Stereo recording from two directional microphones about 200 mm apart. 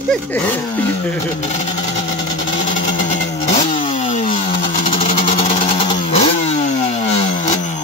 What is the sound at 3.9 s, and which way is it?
Chainsaw, 40° left (ahead or behind).